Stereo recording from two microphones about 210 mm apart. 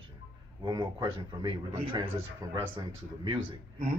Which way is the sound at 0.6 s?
20° right (ahead or behind).